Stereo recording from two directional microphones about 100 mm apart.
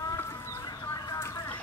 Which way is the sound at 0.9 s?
25° left (ahead or behind).